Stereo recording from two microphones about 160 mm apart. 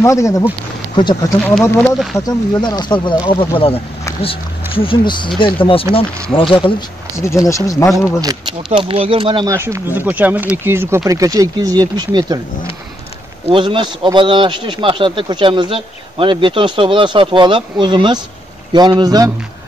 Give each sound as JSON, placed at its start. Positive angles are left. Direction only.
{"t": 0.0, "sound": "speech", "side_deg": 20}
{"t": 2.1, "sound": "speech", "side_deg": 25}
{"t": 7.2, "sound": "speech", "side_deg": 20}
{"t": 8.2, "sound": "speech", "side_deg": -25}
{"t": 9.5, "sound": "speech", "side_deg": -15}
{"t": 13.5, "sound": "speech", "side_deg": -30}